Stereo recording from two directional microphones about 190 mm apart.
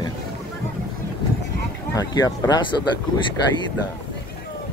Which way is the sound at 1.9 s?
20° left (ahead or behind).